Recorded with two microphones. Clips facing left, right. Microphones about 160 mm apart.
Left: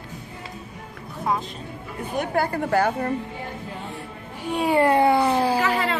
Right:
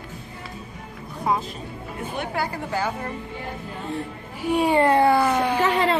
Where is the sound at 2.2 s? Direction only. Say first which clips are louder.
Left 5 dB; 45° left (ahead or behind).